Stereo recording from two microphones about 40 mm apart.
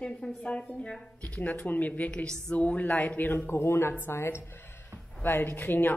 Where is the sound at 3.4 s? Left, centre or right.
Left.